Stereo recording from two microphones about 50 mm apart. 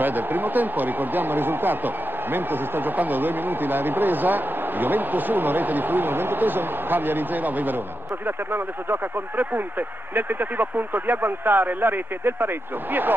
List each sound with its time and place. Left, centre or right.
0.0 s a man's voice: right
3.0 s a man's voice: right
10.1 s speech: right